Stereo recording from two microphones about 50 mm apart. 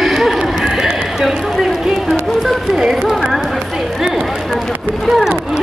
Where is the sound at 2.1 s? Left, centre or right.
Centre.